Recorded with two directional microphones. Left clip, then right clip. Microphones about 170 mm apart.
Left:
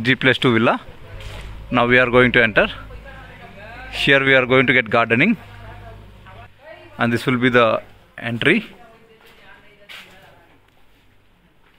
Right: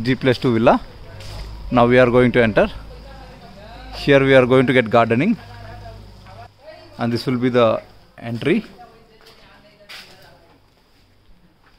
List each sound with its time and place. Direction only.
0.0 s speech: 10° right (ahead or behind)
3.9 s speech: 5° right (ahead or behind)
7.2 s speech: centre (ahead or behind)